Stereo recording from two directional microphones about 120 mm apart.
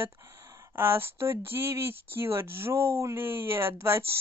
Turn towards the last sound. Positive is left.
turn(degrees=-20)  # may be behind; listen again after turning